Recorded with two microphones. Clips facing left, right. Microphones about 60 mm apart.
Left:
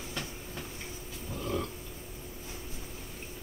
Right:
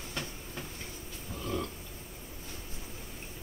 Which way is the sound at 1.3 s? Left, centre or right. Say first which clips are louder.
Left 1 dB; centre.